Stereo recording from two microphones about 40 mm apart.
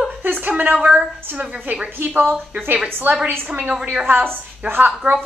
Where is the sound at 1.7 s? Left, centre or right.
Right.